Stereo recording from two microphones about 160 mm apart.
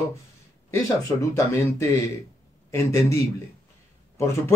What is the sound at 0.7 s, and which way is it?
A man's voice, 15° left (ahead or behind).